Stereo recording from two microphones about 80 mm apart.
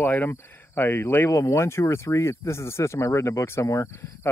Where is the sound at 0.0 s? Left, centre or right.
Left.